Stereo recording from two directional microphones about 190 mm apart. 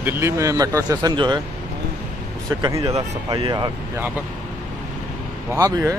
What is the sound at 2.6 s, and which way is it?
Speech, 20° right (ahead or behind).